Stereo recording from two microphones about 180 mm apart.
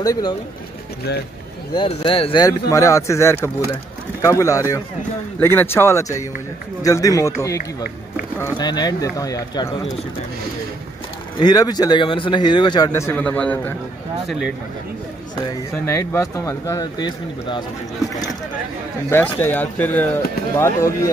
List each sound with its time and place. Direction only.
0.0 s a man's voice: 20° left (ahead or behind)
1.8 s speech: 30° left (ahead or behind)
8.4 s a man's voice: 20° left (ahead or behind)
11.3 s a man's voice: 20° left (ahead or behind)
15.8 s speech: 15° left (ahead or behind)
19.0 s speech: 10° left (ahead or behind)